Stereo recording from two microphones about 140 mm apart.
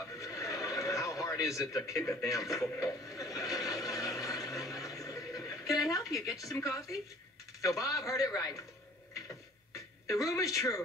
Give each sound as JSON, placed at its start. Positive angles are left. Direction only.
{"t": 0.2, "sound": "neigh", "side_deg": 25}
{"t": 5.9, "sound": "a man's voice", "side_deg": 25}
{"t": 10.0, "sound": "a man's voice", "side_deg": 25}